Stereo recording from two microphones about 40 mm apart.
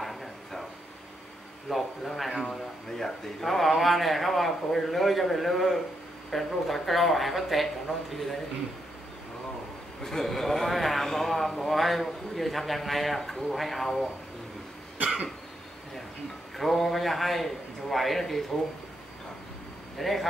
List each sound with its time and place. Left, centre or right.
0.0 s a sound: centre
1.7 s speech: centre
10.0 s speech: centre
16.5 s speech: centre
20.0 s speech: centre